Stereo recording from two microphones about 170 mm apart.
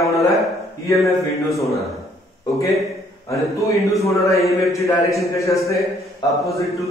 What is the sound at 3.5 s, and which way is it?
A man's voice, 20° left (ahead or behind).